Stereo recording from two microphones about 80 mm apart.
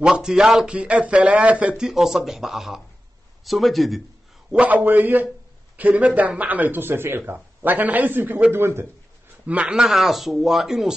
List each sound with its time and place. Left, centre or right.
0.0 s speech: centre
4.5 s speech: centre
9.5 s speech: centre